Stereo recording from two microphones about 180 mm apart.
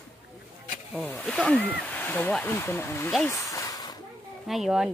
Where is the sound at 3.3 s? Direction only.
15° left (ahead or behind).